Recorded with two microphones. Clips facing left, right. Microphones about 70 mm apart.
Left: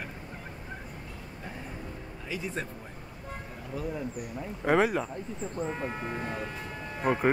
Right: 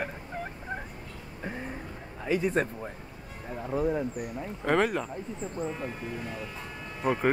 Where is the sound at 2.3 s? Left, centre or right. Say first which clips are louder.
Right 9 dB; right.